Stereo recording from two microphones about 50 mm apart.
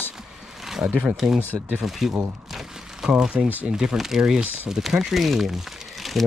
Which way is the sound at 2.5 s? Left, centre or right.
Centre.